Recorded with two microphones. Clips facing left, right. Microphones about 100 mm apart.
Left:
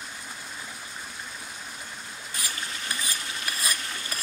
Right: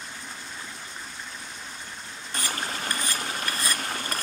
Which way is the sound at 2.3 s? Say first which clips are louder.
Right 5 dB; 50° right (ahead or behind).